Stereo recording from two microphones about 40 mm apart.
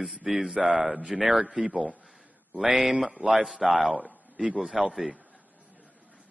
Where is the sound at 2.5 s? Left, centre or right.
Right.